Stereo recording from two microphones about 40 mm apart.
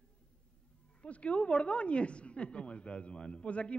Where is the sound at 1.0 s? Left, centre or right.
Left.